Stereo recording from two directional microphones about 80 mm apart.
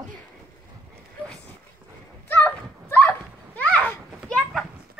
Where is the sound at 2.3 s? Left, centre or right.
Left.